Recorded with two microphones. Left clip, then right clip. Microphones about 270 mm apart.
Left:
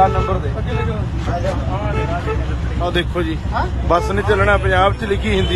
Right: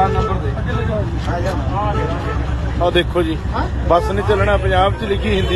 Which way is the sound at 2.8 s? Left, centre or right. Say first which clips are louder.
Right 4 dB; centre.